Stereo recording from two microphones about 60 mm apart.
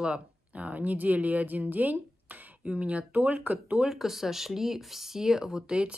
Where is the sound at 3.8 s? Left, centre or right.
Centre.